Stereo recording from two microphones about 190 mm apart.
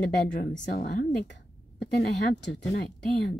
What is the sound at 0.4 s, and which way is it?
A woman's voice, 65° left (ahead or behind).